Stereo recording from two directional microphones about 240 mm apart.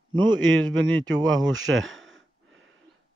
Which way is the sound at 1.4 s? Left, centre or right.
Right.